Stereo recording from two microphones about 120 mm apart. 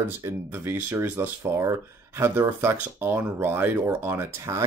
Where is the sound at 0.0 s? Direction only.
20° right (ahead or behind).